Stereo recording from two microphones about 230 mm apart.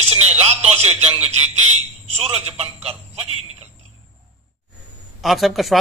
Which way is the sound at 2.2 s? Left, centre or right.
Right.